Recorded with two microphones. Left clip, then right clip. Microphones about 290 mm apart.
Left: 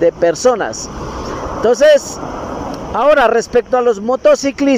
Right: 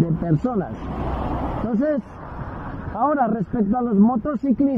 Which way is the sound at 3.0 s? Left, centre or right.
Left.